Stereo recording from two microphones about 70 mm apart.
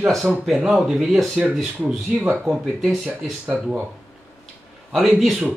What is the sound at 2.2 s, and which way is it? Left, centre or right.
Speech, right.